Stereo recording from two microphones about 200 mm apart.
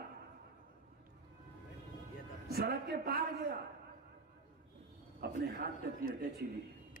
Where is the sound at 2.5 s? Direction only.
50° right (ahead or behind).